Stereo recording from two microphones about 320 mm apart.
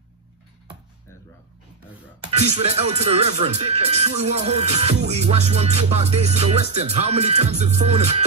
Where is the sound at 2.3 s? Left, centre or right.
Right.